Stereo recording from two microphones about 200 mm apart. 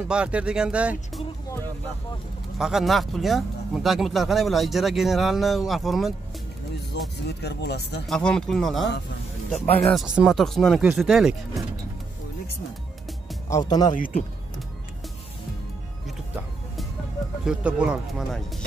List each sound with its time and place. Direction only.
0.1 s speech: 5° right (ahead or behind)
2.6 s speech: centre (ahead or behind)
7.2 s speech: 55° left (ahead or behind)
8.1 s speech: 5° left (ahead or behind)
13.5 s speech: 20° left (ahead or behind)
13.9 s speech: 45° left (ahead or behind)
17.5 s speech: 5° right (ahead or behind)